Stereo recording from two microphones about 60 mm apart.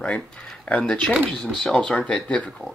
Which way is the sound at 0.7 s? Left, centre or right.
Centre.